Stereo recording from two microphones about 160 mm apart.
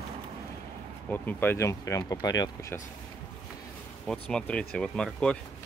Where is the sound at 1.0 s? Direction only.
10° left (ahead or behind).